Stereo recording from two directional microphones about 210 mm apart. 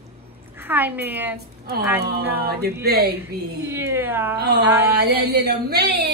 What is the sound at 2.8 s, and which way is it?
Speech, 50° right (ahead or behind).